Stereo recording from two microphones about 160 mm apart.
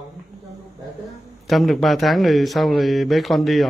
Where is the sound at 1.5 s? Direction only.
Centre (ahead or behind).